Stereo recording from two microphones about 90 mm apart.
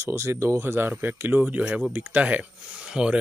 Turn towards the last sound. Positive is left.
turn(degrees=-10)  # may be behind; listen again after turning